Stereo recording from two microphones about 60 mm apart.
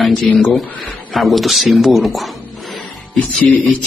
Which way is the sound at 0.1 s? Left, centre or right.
Left.